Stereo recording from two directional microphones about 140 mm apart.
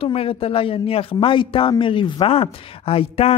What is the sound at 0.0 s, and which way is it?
A man's voice, 45° left (ahead or behind).